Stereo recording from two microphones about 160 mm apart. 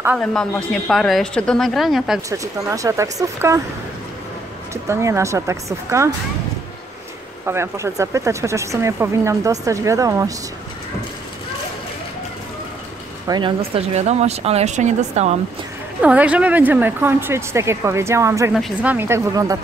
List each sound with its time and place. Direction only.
0.2 s a woman's voice: 5° left (ahead or behind)
2.2 s speech: 20° right (ahead or behind)
4.8 s speech: 20° right (ahead or behind)
7.4 s speech: 15° right (ahead or behind)
13.3 s speech: 35° right (ahead or behind)
16.0 s speech: 10° right (ahead or behind)
18.5 s speech: 5° right (ahead or behind); by 19.6 s 20° right (ahead or behind)